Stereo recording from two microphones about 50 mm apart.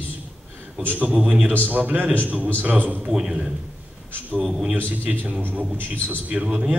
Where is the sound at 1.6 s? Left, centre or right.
Right.